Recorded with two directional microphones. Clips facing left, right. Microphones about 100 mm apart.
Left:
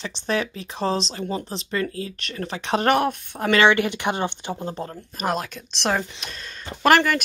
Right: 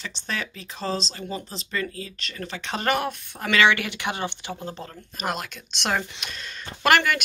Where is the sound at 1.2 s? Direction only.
65° left (ahead or behind).